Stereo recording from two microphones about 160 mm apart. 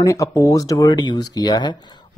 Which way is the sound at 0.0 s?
20° left (ahead or behind).